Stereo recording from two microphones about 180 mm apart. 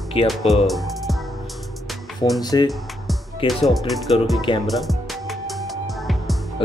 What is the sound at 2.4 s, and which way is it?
Speech, 20° left (ahead or behind).